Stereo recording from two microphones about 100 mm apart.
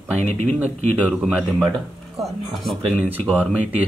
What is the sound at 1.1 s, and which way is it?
Speech, centre (ahead or behind).